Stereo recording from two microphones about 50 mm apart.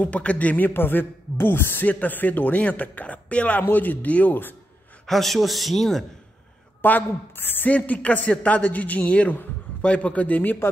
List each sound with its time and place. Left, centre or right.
0.0 s a man's voice: left
1.9 s a man's voice: left
5.0 s a man's voice: centre
6.8 s a man's voice: left
7.7 s a man's voice: left